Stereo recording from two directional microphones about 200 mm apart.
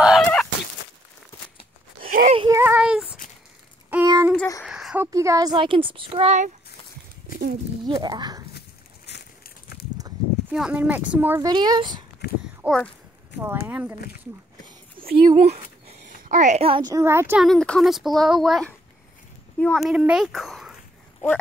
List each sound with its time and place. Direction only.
0.0 s fowl: centre (ahead or behind)
2.0 s a sound: 45° right (ahead or behind)
2.5 s child singing: 10° right (ahead or behind)
3.9 s child singing: 15° right (ahead or behind)
4.4 s a sound: 15° left (ahead or behind)
4.6 s speech: 5° right (ahead or behind); by 6.5 s 35° right (ahead or behind)
7.8 s speech: 20° right (ahead or behind)
8.5 s a sound: 55° left (ahead or behind)
10.5 s speech: 5° right (ahead or behind); by 12.0 s 20° right (ahead or behind)
12.6 s a child's voice: 5° left (ahead or behind)
13.7 s speech: 5° right (ahead or behind)
15.0 s a child's voice: 25° right (ahead or behind)
17.5 s speech: centre (ahead or behind)